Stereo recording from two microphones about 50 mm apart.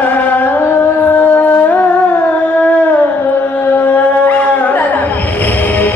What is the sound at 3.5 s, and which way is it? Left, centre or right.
Music, left.